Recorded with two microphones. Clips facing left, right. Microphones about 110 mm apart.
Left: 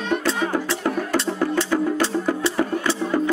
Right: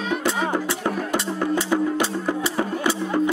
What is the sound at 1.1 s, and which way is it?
Music, 15° right (ahead or behind).